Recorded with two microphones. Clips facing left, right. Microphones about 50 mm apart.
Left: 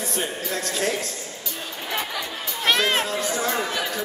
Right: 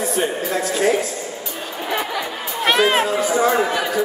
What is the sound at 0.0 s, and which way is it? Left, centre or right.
A man's voice, centre.